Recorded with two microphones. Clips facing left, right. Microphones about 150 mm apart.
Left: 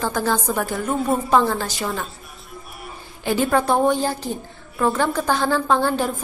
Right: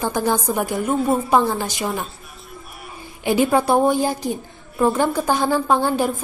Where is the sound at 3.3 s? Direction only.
15° right (ahead or behind).